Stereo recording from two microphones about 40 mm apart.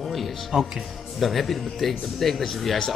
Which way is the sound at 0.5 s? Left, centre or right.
Centre.